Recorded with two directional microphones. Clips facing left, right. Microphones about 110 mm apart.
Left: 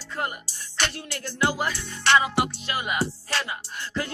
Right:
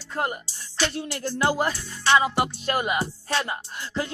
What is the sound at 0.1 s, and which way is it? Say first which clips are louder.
Speech: right 3 dB; 30° right (ahead or behind).